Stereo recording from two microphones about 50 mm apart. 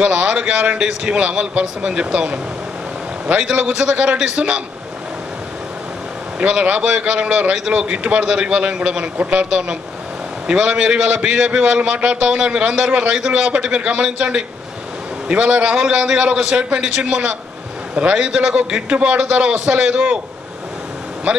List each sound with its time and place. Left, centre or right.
0.0 s a man's voice: centre
6.4 s a man's voice: right